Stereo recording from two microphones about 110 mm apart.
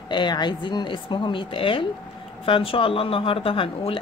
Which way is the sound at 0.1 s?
45° left (ahead or behind).